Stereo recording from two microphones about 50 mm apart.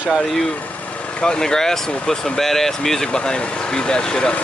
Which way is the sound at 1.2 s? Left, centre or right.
Centre.